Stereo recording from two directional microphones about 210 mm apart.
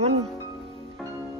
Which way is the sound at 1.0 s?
Centre (ahead or behind).